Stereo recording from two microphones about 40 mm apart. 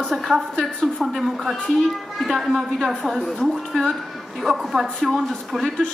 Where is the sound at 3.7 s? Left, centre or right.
Left.